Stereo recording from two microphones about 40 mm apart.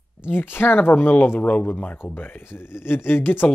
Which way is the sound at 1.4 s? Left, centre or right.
Left.